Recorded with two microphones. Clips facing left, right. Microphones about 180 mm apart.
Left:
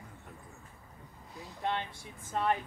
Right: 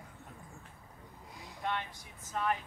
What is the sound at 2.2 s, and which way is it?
Speech, 30° left (ahead or behind).